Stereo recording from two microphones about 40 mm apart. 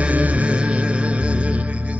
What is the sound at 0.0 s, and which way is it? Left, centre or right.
Music, right.